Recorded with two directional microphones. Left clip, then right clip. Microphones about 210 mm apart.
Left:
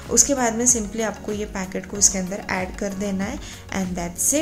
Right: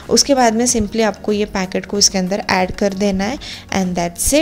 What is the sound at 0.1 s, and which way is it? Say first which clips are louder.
Speech: right 7 dB; 35° right (ahead or behind).